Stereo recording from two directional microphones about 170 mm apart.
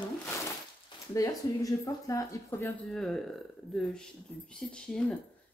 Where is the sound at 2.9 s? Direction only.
Centre (ahead or behind).